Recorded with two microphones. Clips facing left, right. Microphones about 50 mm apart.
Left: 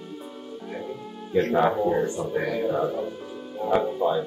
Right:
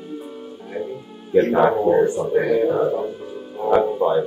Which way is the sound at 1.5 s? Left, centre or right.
Centre.